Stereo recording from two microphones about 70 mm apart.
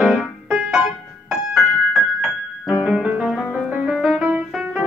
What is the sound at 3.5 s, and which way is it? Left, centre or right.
Music, right.